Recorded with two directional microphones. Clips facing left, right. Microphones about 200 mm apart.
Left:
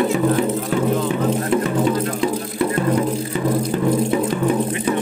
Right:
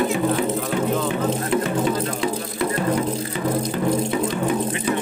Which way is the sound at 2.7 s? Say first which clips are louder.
Left 2 dB; 40° left (ahead or behind).